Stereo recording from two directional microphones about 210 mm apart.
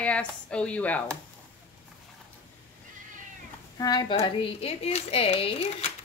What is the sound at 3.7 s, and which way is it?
Speech, 20° left (ahead or behind).